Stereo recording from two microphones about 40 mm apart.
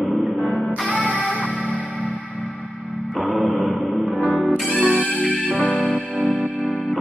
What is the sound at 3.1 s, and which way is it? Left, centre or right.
Music, centre.